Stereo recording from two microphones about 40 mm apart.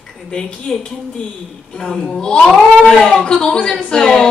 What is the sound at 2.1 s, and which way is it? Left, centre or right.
Speech, centre.